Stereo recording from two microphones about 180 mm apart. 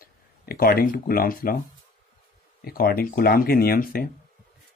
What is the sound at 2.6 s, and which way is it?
Speech, 55° left (ahead or behind).